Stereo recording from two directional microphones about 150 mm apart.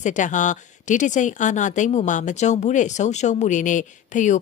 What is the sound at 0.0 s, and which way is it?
Speech, 55° left (ahead or behind).